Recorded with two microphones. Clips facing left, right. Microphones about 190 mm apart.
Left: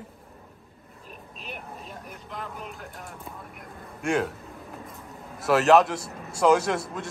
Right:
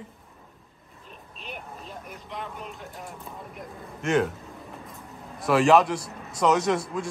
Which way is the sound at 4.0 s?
Centre (ahead or behind).